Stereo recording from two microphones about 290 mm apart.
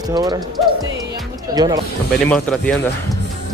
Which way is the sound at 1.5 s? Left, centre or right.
Centre.